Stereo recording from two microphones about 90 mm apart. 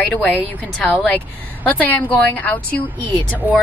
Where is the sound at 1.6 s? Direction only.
20° left (ahead or behind).